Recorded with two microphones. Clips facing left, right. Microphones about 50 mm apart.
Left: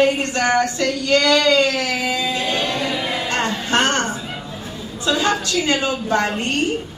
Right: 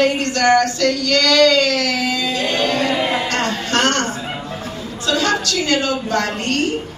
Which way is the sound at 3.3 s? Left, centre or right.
Left.